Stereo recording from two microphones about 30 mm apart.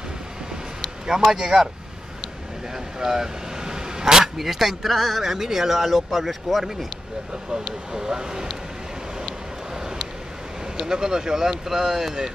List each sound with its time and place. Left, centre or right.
1.2 s speech: centre
3.0 s vehicle: centre
4.4 s speech: centre
7.9 s speech: right
9.8 s vehicle: centre
10.8 s speech: right